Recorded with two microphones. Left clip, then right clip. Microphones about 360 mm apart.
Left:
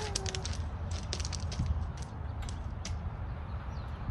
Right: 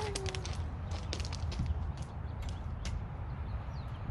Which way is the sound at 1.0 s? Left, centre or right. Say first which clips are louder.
Left 3 dB; centre.